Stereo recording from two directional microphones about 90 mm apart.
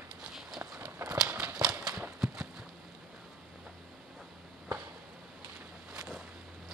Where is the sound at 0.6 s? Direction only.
30° right (ahead or behind).